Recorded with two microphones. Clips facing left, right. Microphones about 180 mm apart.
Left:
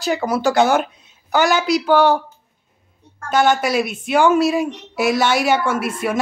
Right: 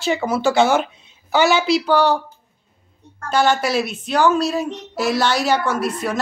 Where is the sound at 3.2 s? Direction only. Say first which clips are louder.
Left 1 dB; centre (ahead or behind).